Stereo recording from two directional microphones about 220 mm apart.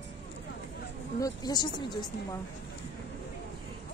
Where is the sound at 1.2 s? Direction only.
15° left (ahead or behind).